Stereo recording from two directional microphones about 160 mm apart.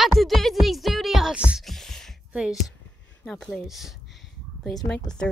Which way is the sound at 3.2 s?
Centre (ahead or behind).